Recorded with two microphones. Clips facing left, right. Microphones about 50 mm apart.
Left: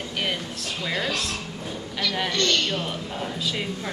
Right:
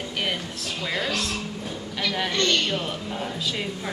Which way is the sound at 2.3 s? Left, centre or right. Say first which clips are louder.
Right 1 dB; centre.